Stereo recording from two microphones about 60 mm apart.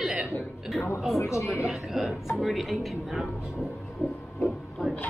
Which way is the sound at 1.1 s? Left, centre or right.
Left.